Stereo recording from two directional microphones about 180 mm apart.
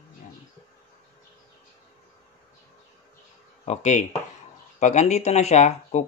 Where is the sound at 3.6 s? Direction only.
40° left (ahead or behind).